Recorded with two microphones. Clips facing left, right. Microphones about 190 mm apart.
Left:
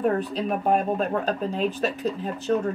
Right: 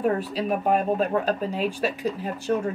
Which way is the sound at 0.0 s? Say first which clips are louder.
Even; 5° right (ahead or behind).